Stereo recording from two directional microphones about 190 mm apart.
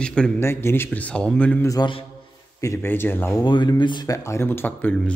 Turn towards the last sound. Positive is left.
turn(degrees=5)  # may be behind; listen again after turning